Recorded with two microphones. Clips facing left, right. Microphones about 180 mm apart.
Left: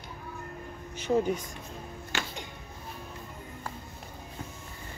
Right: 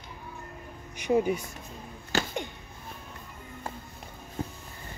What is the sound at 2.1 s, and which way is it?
Music, 35° right (ahead or behind).